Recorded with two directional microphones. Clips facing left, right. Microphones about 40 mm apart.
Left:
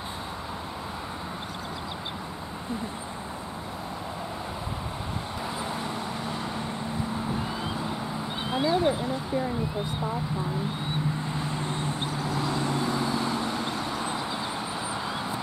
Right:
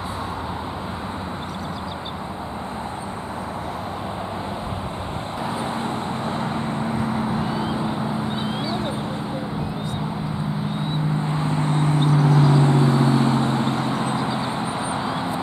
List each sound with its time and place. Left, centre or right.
11.2 s vehicle: right